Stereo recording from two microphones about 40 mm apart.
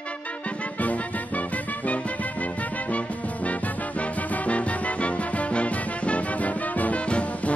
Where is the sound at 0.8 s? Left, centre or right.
Left.